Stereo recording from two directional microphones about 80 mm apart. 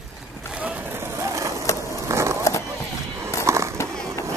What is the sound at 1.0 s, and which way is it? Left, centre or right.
Vehicle, right.